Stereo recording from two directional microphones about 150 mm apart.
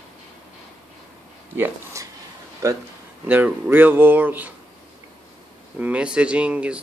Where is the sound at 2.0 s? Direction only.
20° right (ahead or behind).